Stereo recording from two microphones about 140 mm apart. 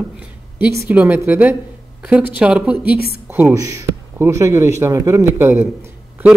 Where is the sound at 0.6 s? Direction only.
10° right (ahead or behind).